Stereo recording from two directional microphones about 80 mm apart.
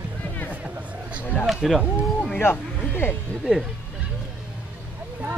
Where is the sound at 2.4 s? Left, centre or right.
Left.